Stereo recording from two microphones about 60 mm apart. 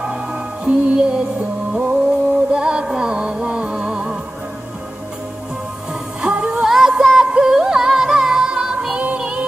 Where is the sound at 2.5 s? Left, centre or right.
Centre.